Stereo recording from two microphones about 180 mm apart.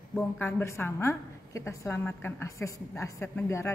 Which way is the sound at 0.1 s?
10° left (ahead or behind).